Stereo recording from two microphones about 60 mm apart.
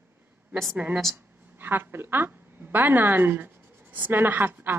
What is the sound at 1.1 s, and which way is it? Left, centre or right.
A woman's voice, right.